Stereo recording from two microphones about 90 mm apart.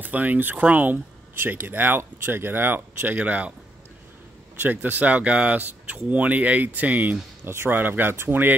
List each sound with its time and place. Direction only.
0.0 s speech: 20° right (ahead or behind)
4.6 s speech: 20° right (ahead or behind)